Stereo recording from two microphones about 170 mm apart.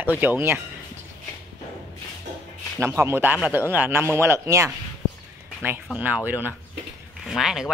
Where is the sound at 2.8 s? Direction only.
15° right (ahead or behind).